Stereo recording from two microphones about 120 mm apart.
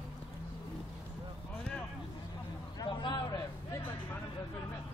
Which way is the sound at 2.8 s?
35° left (ahead or behind).